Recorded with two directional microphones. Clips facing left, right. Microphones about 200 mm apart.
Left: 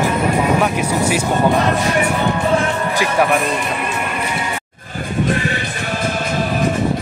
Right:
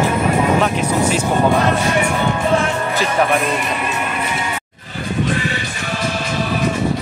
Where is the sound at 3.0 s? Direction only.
10° left (ahead or behind).